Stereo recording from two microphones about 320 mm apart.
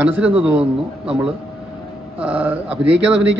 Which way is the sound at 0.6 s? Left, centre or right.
Centre.